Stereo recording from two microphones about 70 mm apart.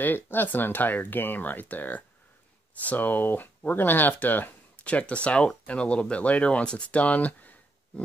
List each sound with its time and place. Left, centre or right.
0.0 s speech: left